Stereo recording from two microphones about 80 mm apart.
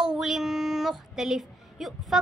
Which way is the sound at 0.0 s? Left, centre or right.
Centre.